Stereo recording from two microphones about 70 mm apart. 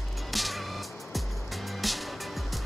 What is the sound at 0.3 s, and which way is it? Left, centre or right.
Music, centre.